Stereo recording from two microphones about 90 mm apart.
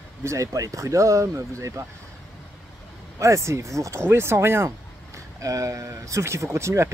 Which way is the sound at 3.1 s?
35° right (ahead or behind).